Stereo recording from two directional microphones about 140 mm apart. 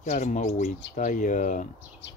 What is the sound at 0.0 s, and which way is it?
Speech, 60° left (ahead or behind).